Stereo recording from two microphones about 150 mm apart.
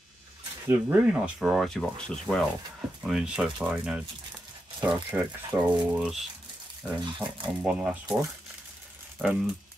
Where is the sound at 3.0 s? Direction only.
5° right (ahead or behind).